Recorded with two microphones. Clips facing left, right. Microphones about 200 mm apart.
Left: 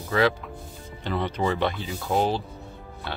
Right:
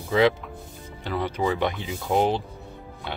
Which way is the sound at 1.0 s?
10° right (ahead or behind).